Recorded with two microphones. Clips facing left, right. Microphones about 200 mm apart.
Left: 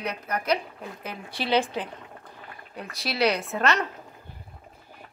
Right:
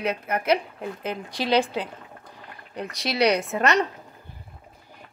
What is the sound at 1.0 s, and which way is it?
Speech, 15° right (ahead or behind).